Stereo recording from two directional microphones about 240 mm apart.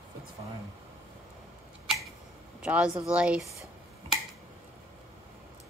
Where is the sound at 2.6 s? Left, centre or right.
Centre.